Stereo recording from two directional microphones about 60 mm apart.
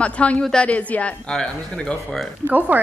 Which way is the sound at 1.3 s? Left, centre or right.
Centre.